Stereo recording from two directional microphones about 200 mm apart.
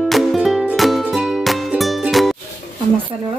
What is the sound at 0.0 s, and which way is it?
Music, centre (ahead or behind).